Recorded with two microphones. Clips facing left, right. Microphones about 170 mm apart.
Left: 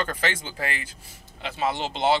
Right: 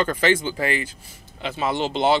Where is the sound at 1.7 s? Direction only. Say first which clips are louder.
Right 7 dB; 60° right (ahead or behind).